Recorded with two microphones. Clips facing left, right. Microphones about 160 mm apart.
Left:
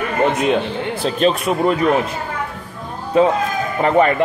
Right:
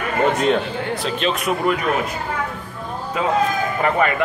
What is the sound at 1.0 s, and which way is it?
Speech, 35° left (ahead or behind).